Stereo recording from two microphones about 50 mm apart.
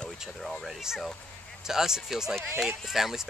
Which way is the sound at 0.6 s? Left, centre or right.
Centre.